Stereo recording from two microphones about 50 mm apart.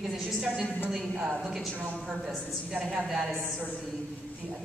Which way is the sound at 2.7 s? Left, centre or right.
Centre.